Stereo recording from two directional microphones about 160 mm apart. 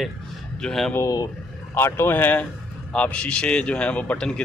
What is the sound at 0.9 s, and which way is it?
Speech, 20° left (ahead or behind).